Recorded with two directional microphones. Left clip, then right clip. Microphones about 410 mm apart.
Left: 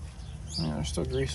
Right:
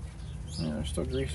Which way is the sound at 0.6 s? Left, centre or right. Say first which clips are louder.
Even; centre.